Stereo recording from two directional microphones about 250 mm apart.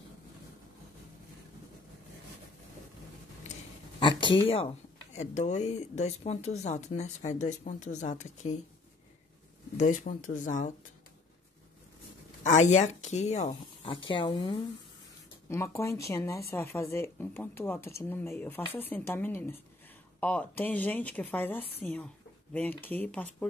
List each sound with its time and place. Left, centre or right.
4.2 s speech: centre
9.8 s speech: left
12.5 s speech: left; by 23.2 s centre